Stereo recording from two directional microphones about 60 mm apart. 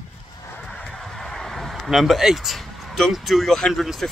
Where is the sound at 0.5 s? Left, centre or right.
Left.